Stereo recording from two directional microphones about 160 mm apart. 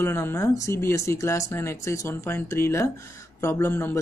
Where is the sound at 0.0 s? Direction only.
15° left (ahead or behind).